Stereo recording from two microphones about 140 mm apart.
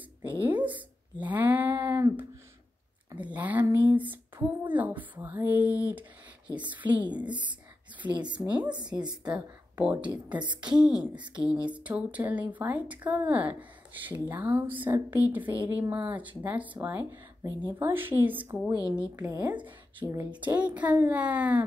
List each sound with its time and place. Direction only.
0.2 s speech: 15° right (ahead or behind)
0.6 s a sound: 10° right (ahead or behind)
3.2 s speech: 10° right (ahead or behind)
7.2 s speech: 35° right (ahead or behind)
8.4 s speech: 10° right (ahead or behind)
8.7 s speech: 30° right (ahead or behind)
9.3 s speech: 10° right (ahead or behind)
15.4 s speech: 35° right (ahead or behind)
15.8 s speech: 15° right (ahead or behind)